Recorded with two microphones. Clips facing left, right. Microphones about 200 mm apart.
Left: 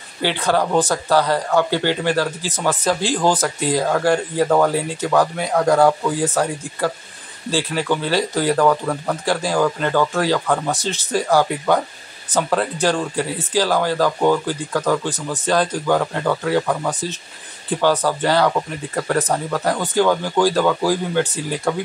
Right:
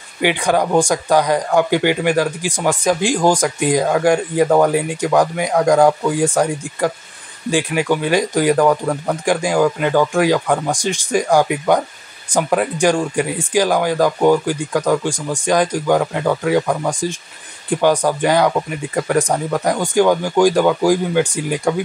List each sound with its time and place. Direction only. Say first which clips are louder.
0.2 s speech: right 3 dB; 15° right (ahead or behind)